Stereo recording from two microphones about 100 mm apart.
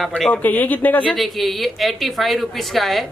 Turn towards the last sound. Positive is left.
turn(degrees=0)  # may be behind; listen again after turning